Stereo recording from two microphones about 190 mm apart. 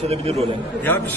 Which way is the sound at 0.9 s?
10° left (ahead or behind).